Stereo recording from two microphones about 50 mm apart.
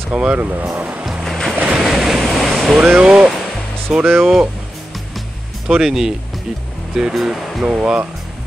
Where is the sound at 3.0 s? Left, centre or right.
Centre.